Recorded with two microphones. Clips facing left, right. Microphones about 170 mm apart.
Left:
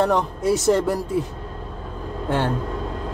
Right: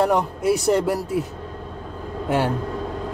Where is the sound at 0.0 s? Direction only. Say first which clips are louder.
Even; 10° right (ahead or behind).